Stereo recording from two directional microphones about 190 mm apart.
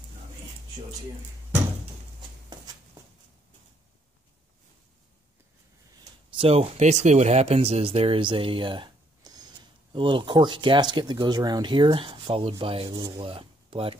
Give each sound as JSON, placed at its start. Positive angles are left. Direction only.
{"t": 6.3, "sound": "speech", "side_deg": -30}